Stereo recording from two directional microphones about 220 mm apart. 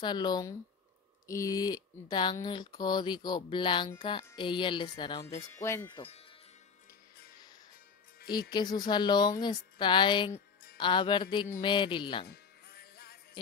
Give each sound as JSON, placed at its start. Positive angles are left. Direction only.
{"t": 0.0, "sound": "speech", "side_deg": 20}
{"t": 8.3, "sound": "speech", "side_deg": 20}
{"t": 12.3, "sound": "music", "side_deg": 45}